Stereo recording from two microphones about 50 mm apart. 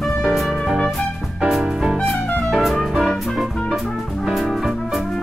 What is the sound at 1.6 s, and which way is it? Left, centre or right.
Music, centre.